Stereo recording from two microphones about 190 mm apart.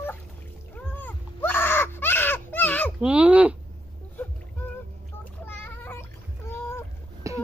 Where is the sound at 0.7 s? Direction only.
10° left (ahead or behind).